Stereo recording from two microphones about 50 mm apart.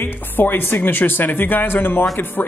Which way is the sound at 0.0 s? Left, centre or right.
Left.